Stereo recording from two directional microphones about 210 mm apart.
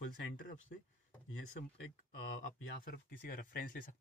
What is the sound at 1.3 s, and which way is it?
Speech, 65° left (ahead or behind).